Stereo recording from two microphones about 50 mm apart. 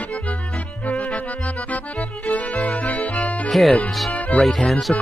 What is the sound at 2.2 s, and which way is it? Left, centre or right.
Music, left.